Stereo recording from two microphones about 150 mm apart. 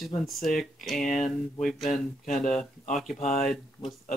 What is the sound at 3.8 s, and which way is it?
Speech, 35° left (ahead or behind).